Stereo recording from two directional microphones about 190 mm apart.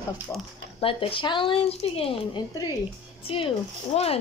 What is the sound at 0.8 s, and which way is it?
A woman's voice, 30° left (ahead or behind).